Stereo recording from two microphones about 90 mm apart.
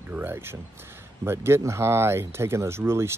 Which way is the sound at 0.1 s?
25° right (ahead or behind).